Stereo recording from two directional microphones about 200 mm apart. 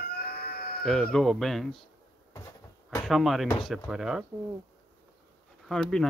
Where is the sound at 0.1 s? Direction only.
50° left (ahead or behind).